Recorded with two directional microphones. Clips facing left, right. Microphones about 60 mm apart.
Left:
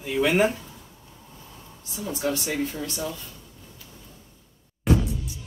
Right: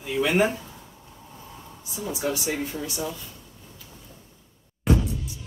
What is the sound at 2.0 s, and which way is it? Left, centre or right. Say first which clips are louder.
Speech: even; centre.